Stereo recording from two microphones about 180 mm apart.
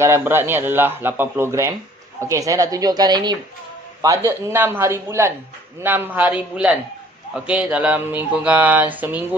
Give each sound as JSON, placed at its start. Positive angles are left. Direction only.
{"t": 0.0, "sound": "speech", "side_deg": -15}